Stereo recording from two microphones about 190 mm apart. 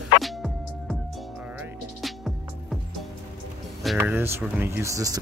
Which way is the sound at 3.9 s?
10° right (ahead or behind).